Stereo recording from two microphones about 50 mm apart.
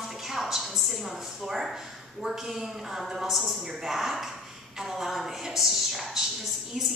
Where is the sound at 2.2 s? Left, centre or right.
Centre.